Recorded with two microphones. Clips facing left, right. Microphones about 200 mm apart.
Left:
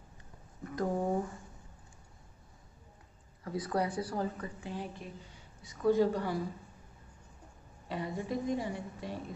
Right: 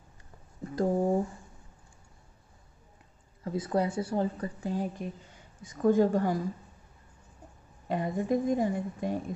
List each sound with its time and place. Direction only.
0.7 s a sound: 30° right (ahead or behind)
3.4 s a woman's voice: 25° right (ahead or behind); by 6.4 s 45° right (ahead or behind)
7.9 s a woman's voice: 50° right (ahead or behind)